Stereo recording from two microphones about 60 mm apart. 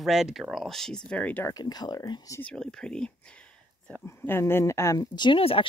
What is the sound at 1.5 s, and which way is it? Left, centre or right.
Speech, left.